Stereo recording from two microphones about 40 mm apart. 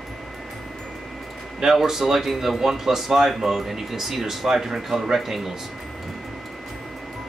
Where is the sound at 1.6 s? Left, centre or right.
Centre.